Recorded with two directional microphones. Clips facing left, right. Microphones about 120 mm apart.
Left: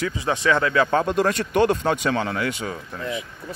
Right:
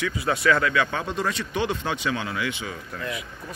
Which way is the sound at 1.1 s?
55° left (ahead or behind).